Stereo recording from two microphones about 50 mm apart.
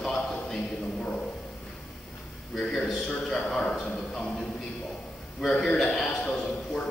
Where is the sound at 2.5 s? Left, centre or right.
Centre.